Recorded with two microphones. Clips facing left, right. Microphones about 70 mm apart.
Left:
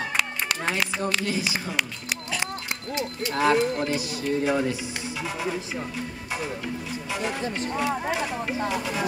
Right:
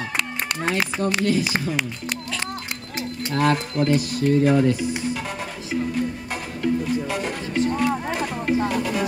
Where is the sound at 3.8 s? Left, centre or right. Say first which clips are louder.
Right 7 dB; right.